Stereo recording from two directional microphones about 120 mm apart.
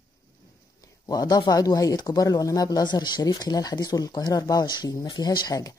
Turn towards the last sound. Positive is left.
turn(degrees=30)  # may be behind; listen again after turning